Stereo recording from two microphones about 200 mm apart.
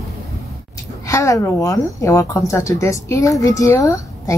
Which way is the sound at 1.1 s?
15° left (ahead or behind).